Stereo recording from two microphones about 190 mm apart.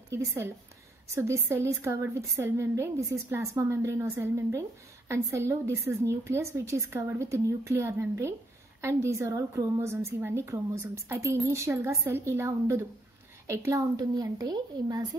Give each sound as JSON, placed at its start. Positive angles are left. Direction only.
{"t": 0.1, "sound": "a woman's voice", "side_deg": -15}